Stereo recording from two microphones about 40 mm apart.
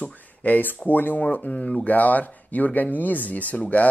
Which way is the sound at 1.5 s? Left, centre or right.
Left.